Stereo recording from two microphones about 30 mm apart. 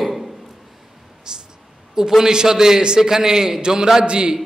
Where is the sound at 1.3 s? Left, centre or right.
Right.